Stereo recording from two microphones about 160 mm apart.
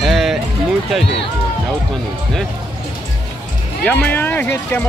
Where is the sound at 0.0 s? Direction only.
Centre (ahead or behind).